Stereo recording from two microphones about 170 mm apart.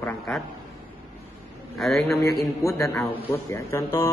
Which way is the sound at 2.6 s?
15° left (ahead or behind).